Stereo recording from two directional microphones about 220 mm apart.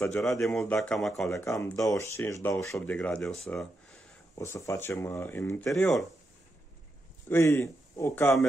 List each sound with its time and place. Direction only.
0.0 s speech: centre (ahead or behind)
1.3 s speech: 15° left (ahead or behind)
4.4 s speech: 15° left (ahead or behind)
7.2 s speech: 10° left (ahead or behind)